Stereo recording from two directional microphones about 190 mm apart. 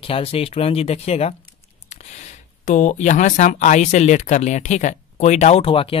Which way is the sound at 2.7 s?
40° left (ahead or behind).